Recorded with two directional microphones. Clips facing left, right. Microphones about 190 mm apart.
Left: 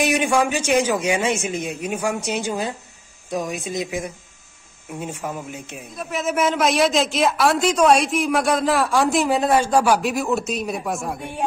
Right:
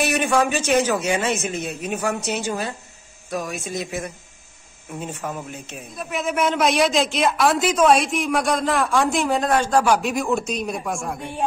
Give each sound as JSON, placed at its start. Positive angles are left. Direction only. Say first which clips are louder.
{"t": 0.0, "sound": "a man's voice", "louder": "left 1 dB", "side_deg": 15}
{"t": 5.9, "sound": "a man's voice", "louder": "left 1 dB", "side_deg": 0}